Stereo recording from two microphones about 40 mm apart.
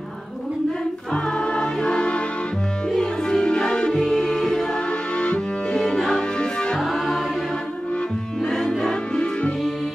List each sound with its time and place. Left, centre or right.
1.1 s music: left
3.9 s music: centre
4.7 s music: left
6.8 s music: centre
8.5 s music: centre
9.1 s music: left